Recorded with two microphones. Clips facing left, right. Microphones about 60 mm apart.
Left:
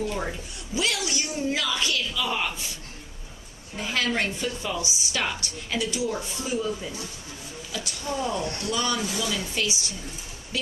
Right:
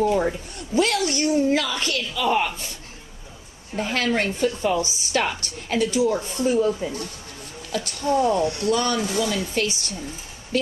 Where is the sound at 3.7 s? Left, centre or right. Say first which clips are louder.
Right 4 dB; right.